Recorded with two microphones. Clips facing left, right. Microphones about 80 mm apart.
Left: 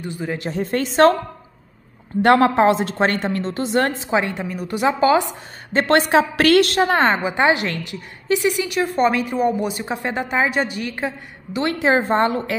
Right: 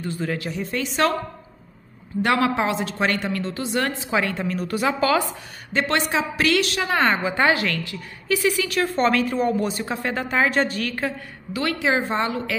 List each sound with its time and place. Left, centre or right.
0.0 s a man's voice: centre
0.4 s a woman's voice: left
2.2 s a woman's voice: left
5.7 s a woman's voice: left
7.1 s a woman's voice: centre
11.9 s a woman's voice: left